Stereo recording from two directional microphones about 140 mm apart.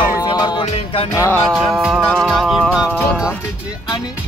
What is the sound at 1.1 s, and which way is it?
Music, 20° left (ahead or behind).